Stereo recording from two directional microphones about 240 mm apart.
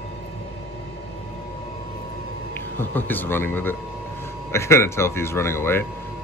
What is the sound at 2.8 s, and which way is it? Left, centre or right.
Speech, centre.